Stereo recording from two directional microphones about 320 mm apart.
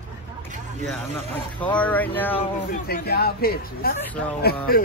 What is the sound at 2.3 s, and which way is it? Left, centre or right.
Speech, centre.